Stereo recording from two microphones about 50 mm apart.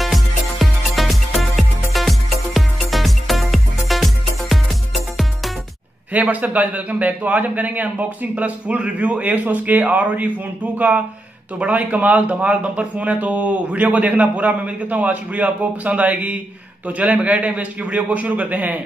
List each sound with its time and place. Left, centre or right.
0.0 s music: centre
6.1 s a man's voice: right